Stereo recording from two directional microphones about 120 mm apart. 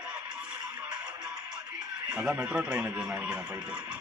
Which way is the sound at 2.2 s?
15° right (ahead or behind).